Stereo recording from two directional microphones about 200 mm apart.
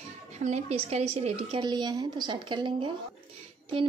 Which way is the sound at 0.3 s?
35° right (ahead or behind).